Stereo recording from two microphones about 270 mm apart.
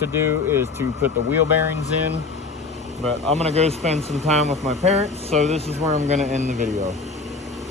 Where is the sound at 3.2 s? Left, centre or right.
Right.